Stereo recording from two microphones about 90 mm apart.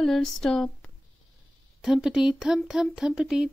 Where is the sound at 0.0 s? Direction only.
5° left (ahead or behind).